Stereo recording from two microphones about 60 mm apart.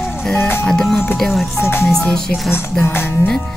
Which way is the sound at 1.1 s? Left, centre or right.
Centre.